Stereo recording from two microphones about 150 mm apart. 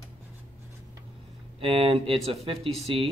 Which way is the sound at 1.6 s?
40° right (ahead or behind).